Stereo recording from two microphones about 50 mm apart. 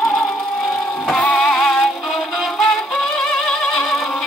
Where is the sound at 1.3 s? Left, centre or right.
Centre.